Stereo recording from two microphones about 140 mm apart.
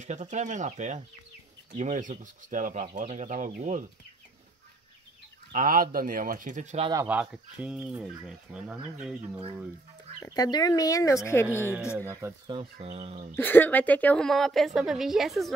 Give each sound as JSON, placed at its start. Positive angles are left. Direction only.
{"t": 0.3, "sound": "speech", "side_deg": -60}
{"t": 5.5, "sound": "speech", "side_deg": -80}
{"t": 7.1, "sound": "speech", "side_deg": -10}
{"t": 10.3, "sound": "speech", "side_deg": 25}
{"t": 12.1, "sound": "speech", "side_deg": -20}
{"t": 12.4, "sound": "speech", "side_deg": -40}
{"t": 13.4, "sound": "a woman's voice", "side_deg": 15}